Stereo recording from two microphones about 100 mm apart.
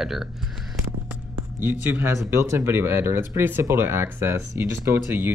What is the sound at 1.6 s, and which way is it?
Speech, 25° right (ahead or behind).